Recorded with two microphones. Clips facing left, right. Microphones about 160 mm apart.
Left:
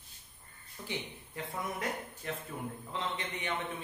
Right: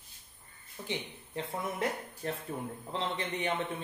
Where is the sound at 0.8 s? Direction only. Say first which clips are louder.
Right 2 dB; 25° right (ahead or behind).